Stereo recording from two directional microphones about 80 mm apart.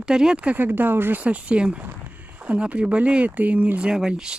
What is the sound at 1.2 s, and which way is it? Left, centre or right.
Speech, centre.